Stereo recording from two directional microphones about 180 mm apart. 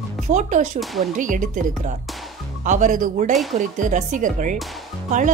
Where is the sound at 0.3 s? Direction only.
40° right (ahead or behind).